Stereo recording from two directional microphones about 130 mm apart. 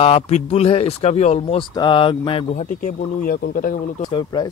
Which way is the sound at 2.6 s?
90° left.